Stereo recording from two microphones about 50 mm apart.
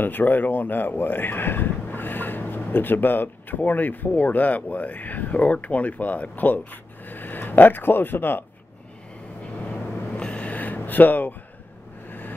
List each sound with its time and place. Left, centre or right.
0.0 s speech: left
9.4 s a sound: left
10.8 s speech: left
12.1 s vehicle: left